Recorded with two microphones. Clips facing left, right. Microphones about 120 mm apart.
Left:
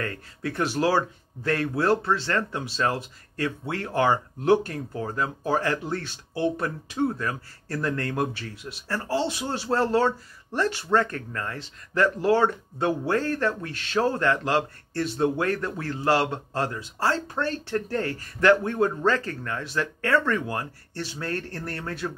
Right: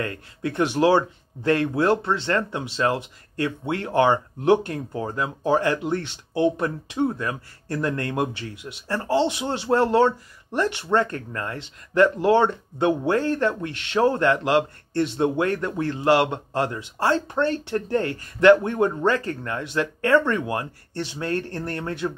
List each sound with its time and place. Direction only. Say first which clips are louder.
0.0 s speech: right 3 dB; 20° right (ahead or behind)